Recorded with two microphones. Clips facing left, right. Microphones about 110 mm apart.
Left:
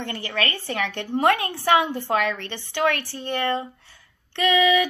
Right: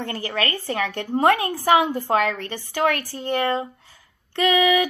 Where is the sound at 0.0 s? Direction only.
35° right (ahead or behind).